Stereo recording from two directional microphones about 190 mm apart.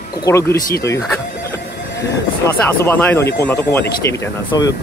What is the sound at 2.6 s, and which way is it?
Speech, 10° left (ahead or behind).